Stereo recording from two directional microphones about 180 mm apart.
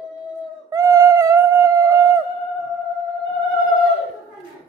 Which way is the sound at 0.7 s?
20° right (ahead or behind).